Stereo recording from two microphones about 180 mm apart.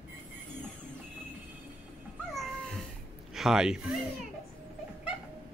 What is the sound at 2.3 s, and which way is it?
Cat, centre (ahead or behind).